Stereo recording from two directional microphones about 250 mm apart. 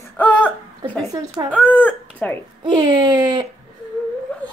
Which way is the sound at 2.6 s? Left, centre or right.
Centre.